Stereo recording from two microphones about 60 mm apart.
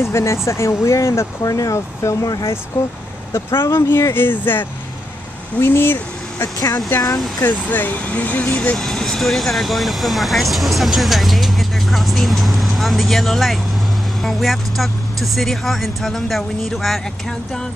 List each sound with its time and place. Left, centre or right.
0.0 s speech: left
1.4 s speech: left
6.4 s speech: left
7.4 s speech: left
8.7 s speech: centre